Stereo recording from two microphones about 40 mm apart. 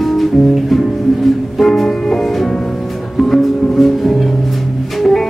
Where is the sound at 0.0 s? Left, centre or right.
Centre.